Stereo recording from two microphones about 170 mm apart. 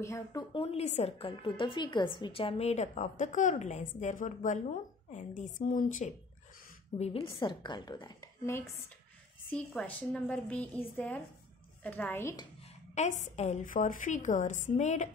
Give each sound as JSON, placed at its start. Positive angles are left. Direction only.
{"t": 0.0, "sound": "a woman's voice", "side_deg": 20}
{"t": 7.0, "sound": "a woman's voice", "side_deg": 35}
{"t": 12.9, "sound": "a woman's voice", "side_deg": 45}